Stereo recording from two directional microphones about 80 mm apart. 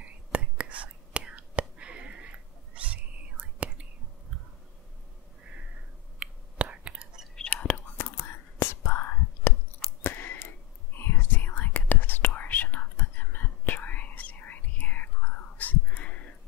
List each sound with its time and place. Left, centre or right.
0.0 s whispering: centre
6.1 s whispering: centre
7.4 s whispering: centre
8.0 s whispering: left
10.0 s a sound: left
11.0 s whispering: left